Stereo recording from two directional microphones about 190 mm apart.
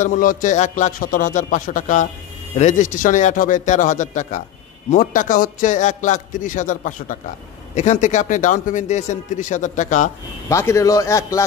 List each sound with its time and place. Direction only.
0.0 s speech: 45° left (ahead or behind)
10.5 s a man's voice: 15° left (ahead or behind)